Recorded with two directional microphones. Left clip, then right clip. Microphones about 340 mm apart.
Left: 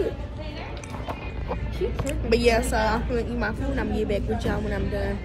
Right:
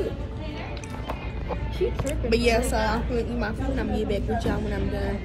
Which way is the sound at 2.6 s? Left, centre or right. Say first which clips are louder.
Left 1 dB; centre.